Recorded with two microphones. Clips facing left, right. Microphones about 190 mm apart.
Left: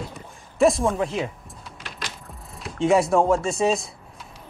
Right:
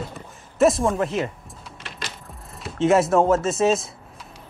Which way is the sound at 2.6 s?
Centre (ahead or behind).